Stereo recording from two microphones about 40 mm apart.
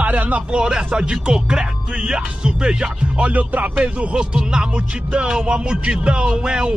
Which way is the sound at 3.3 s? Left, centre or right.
Right.